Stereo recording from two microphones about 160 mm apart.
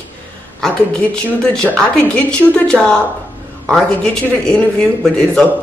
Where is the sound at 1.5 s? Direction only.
5° left (ahead or behind).